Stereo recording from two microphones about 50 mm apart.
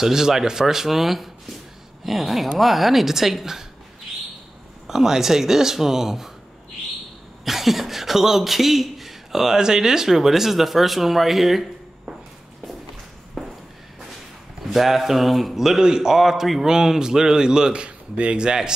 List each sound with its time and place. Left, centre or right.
0.0 s speech: centre
4.8 s speech: centre
7.4 s speech: centre
13.4 s a sound: centre
14.7 s speech: centre
16.2 s speech: centre